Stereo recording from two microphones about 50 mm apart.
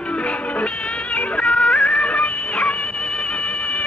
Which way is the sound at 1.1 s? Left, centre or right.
Centre.